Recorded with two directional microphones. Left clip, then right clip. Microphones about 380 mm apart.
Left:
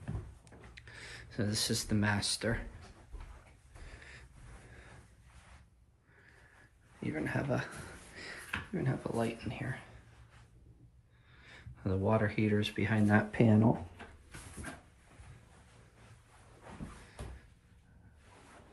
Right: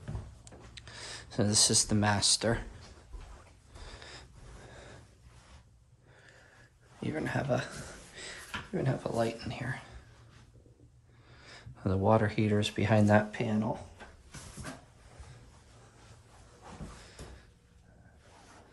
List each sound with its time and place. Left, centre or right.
0.5 s a sound: centre
3.8 s gasp: centre
7.0 s speech: centre
11.3 s speech: centre
13.3 s speech: centre